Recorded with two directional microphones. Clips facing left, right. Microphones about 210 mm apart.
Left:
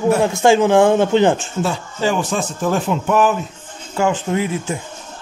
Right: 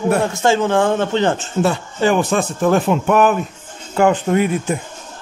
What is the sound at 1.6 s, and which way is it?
Speech, 60° right (ahead or behind).